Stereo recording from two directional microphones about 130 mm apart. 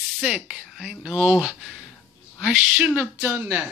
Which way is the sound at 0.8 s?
Centre (ahead or behind).